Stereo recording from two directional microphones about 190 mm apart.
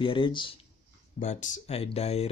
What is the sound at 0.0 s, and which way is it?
Speech, 25° left (ahead or behind).